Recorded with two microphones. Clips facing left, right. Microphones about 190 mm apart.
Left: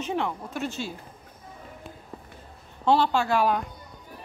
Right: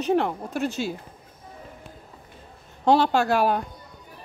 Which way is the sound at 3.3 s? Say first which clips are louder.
Right 2 dB; 40° right (ahead or behind).